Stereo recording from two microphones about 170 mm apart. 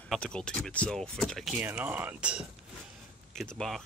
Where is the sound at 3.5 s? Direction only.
Centre (ahead or behind).